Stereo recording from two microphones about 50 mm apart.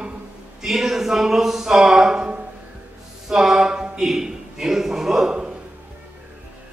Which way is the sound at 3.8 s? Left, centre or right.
Centre.